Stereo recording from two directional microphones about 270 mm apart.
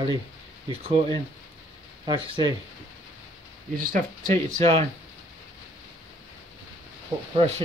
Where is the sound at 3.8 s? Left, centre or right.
Right.